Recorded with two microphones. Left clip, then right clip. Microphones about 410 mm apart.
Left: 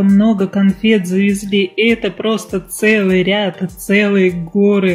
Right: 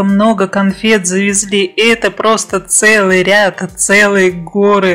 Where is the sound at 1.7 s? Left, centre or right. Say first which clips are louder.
Right 4 dB; right.